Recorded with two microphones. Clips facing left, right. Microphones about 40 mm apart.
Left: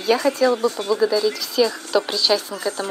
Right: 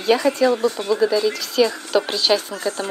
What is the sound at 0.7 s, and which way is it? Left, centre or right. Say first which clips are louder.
Speech: right 1 dB; right.